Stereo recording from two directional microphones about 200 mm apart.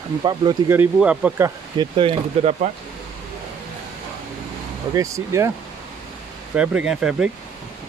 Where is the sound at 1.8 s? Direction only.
25° right (ahead or behind).